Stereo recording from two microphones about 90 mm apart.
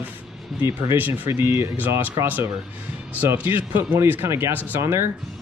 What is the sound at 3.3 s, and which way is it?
Speech, 20° right (ahead or behind).